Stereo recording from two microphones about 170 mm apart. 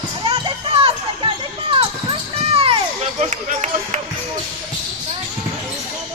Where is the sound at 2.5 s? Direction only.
35° right (ahead or behind).